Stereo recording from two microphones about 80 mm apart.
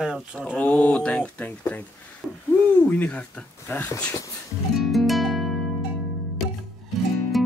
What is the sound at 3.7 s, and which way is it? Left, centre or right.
Speech, left.